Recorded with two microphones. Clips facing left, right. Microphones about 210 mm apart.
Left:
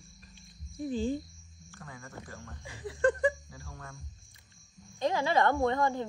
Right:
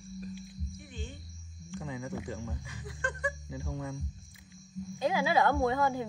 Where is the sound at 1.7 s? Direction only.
15° right (ahead or behind).